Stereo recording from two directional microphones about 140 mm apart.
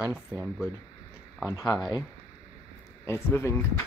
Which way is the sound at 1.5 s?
20° left (ahead or behind).